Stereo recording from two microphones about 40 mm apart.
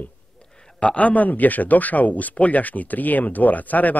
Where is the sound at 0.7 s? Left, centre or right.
Left.